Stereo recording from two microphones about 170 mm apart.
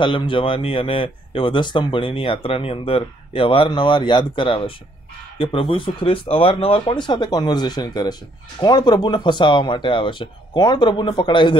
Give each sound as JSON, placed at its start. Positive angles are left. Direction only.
{"t": 0.0, "sound": "speech", "side_deg": 30}